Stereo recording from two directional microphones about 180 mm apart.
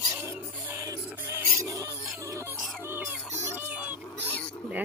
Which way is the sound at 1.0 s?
10° right (ahead or behind).